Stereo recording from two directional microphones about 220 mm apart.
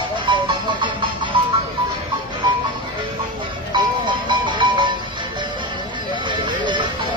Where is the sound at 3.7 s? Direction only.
20° right (ahead or behind).